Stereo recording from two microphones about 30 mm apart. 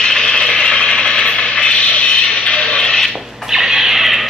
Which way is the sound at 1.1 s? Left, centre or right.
Left.